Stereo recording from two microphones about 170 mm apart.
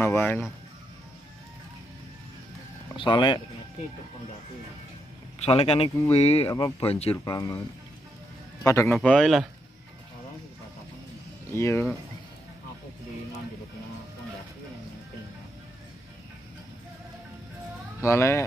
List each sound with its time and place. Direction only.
0.0 s speech: 15° left (ahead or behind)
3.0 s a man's voice: 30° left (ahead or behind)
5.4 s speech: 35° left (ahead or behind)
7.3 s a man's voice: 20° left (ahead or behind)
8.6 s speech: 20° left (ahead or behind)
8.9 s speech: 5° left (ahead or behind)
11.5 s speech: 15° left (ahead or behind)
18.0 s speech: 15° left (ahead or behind)